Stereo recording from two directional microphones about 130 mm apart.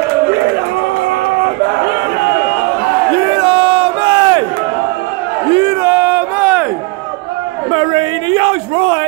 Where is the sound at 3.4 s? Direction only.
45° right (ahead or behind).